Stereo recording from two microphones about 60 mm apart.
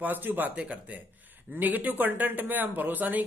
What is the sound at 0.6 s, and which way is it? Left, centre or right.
Speech, right.